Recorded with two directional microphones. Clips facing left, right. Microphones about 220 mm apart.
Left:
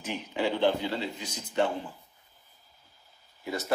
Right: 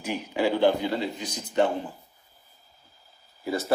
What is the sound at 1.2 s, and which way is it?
Speech, 35° right (ahead or behind).